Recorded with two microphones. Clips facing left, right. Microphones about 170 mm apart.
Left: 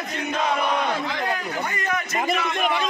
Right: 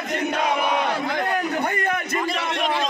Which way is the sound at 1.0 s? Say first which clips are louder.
Right 3 dB; 55° right (ahead or behind).